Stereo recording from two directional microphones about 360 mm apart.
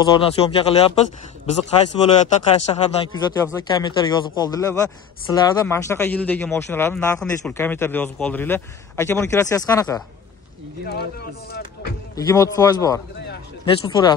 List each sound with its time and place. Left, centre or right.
0.0 s speech: centre
10.9 s speech: left
12.2 s speech: centre